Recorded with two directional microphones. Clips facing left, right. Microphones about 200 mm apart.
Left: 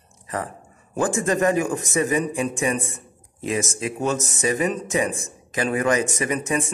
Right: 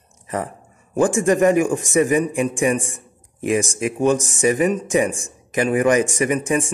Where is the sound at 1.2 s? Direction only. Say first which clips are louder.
Right 5 dB; 20° right (ahead or behind).